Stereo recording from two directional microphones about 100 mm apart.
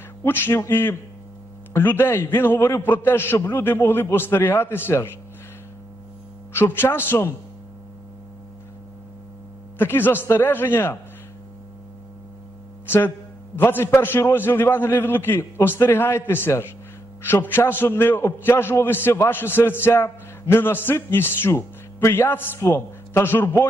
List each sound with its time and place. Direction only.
0.2 s a man's voice: 25° left (ahead or behind)
6.5 s a man's voice: 25° left (ahead or behind)
9.8 s a man's voice: 20° left (ahead or behind)
12.8 s a man's voice: 20° left (ahead or behind)